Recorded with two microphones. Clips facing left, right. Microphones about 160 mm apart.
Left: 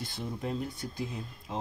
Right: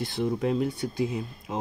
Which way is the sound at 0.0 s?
75° right (ahead or behind).